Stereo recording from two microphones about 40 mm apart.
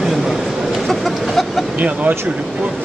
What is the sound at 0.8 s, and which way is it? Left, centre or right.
Chicken, centre.